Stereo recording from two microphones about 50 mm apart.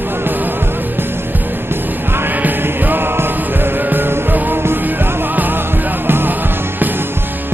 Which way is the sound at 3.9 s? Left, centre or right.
Right.